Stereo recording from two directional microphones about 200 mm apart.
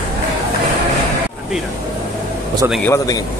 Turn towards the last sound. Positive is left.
turn(degrees=15)  # may be behind; listen again after turning